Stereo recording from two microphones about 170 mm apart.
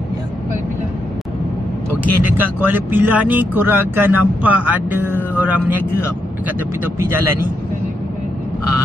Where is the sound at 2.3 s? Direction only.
10° right (ahead or behind).